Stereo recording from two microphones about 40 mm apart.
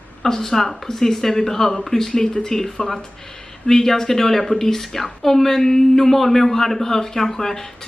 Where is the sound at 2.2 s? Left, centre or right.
Centre.